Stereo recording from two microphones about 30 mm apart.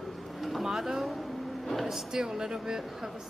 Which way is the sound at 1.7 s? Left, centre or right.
Centre.